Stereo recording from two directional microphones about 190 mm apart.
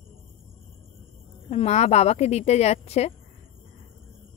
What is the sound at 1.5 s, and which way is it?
Speech, 35° left (ahead or behind).